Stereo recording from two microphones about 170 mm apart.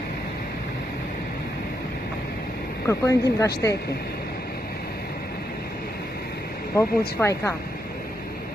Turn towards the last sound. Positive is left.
turn(degrees=15)  # may be behind; listen again after turning